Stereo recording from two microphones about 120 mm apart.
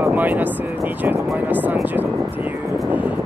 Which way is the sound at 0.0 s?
15° right (ahead or behind).